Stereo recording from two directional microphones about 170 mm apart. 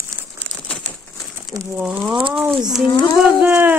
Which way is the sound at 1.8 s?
10° right (ahead or behind).